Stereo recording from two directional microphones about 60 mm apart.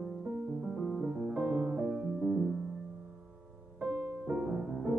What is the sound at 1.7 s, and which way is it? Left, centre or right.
Music, centre.